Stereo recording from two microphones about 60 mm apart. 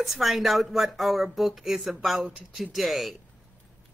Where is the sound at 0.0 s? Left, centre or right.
Centre.